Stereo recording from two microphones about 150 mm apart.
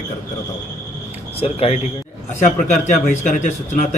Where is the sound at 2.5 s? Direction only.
55° left (ahead or behind).